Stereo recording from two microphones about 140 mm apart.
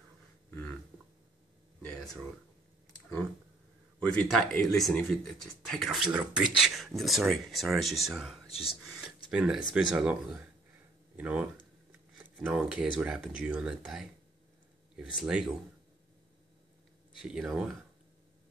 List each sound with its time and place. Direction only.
4.0 s speech: 10° left (ahead or behind)
8.5 s speech: 45° left (ahead or behind)
8.8 s speech: 5° right (ahead or behind)
11.1 s speech: 10° right (ahead or behind)
15.1 s speech: 5° right (ahead or behind)
17.2 s speech: 5° right (ahead or behind)